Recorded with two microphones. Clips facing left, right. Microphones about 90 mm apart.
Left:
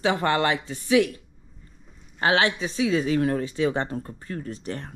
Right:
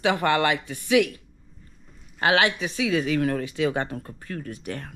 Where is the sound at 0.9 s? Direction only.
35° left (ahead or behind).